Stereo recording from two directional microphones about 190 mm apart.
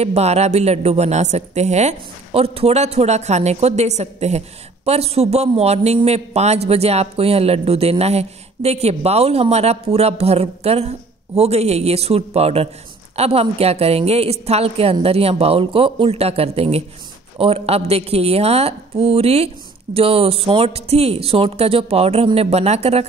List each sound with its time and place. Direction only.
0.0 s a man's voice: 35° right (ahead or behind)